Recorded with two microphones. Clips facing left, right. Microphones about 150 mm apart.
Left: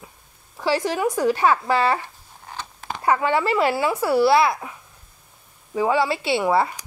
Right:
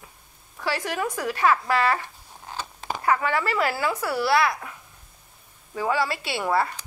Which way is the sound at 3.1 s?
25° left (ahead or behind).